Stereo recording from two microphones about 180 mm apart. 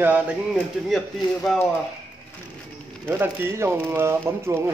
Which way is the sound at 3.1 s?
10° right (ahead or behind).